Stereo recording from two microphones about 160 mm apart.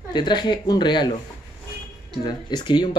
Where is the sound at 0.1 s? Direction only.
30° left (ahead or behind).